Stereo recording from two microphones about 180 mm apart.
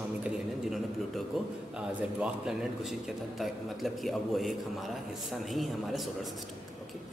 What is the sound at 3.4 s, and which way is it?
A man's voice, centre (ahead or behind).